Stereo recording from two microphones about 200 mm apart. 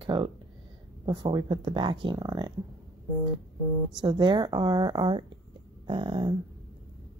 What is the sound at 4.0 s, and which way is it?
Speech, 20° right (ahead or behind).